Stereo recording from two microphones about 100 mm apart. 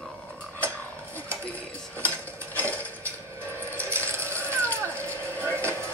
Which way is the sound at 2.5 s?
15° left (ahead or behind).